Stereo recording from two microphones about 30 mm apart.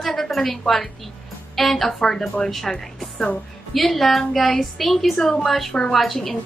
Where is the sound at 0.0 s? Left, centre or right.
Centre.